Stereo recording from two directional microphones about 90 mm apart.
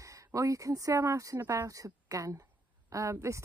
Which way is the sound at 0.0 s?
35° right (ahead or behind).